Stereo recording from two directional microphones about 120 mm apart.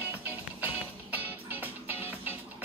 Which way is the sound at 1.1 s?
15° right (ahead or behind).